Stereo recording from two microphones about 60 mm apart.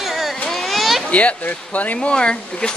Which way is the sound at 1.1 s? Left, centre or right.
Left.